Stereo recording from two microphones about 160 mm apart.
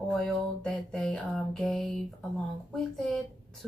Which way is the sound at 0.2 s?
5° left (ahead or behind).